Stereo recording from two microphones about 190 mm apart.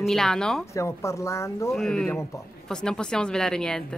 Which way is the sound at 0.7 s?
15° left (ahead or behind).